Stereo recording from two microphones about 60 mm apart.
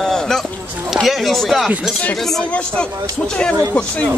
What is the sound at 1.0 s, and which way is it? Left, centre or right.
Speech, centre.